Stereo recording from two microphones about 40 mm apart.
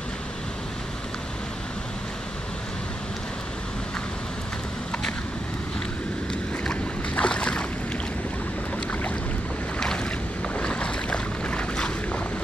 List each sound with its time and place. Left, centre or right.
7.2 s boat: left
10.6 s boat: left